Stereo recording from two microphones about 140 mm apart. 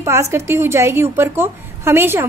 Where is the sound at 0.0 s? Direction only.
20° right (ahead or behind).